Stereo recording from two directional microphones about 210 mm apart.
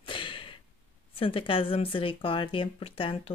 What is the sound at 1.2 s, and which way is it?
Speech, 25° left (ahead or behind).